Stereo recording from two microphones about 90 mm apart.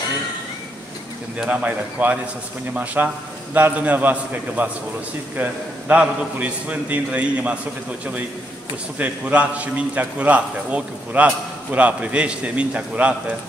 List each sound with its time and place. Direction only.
1.4 s a man's voice: 15° right (ahead or behind)
8.9 s a man's voice: 15° right (ahead or behind)